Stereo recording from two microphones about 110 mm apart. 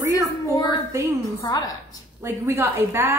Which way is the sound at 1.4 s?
35° left (ahead or behind).